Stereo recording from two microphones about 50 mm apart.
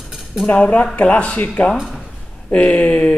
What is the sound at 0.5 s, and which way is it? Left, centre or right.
Speech, left.